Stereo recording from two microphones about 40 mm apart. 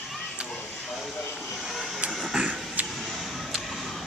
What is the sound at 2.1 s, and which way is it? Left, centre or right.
Vehicle, centre.